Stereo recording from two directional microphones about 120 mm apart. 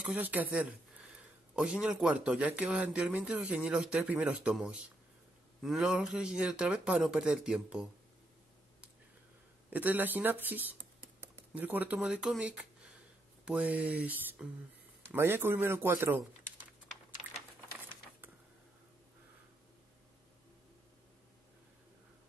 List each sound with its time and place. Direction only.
0.0 s speech: 15° right (ahead or behind)
9.7 s speech: 15° right (ahead or behind)
12.0 s speech: 5° right (ahead or behind)